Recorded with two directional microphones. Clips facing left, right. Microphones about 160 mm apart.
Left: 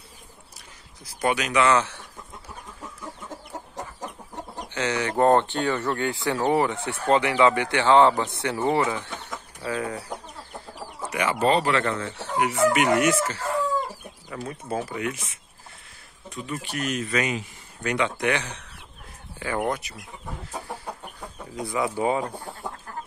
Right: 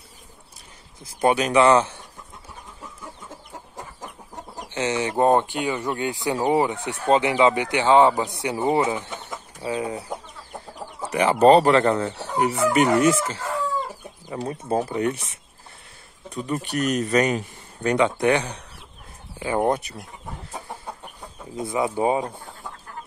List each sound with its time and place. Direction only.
1.2 s speech: 30° right (ahead or behind)
4.7 s speech: 20° right (ahead or behind)
11.1 s speech: 30° right (ahead or behind)
19.6 s speech: 30° right (ahead or behind)
21.5 s speech: 25° right (ahead or behind)